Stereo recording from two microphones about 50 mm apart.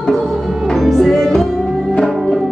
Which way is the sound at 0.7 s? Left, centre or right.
Centre.